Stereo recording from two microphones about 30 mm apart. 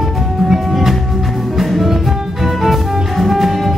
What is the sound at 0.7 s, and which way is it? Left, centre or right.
Music, centre.